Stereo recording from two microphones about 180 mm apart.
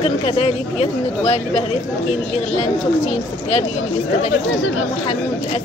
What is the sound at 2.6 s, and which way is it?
Speech, 35° left (ahead or behind).